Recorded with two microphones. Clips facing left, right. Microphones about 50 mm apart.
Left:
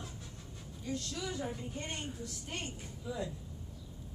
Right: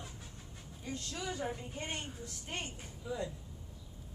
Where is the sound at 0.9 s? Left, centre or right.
Right.